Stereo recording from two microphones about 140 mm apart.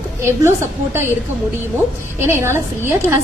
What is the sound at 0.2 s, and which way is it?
Speech, 20° right (ahead or behind).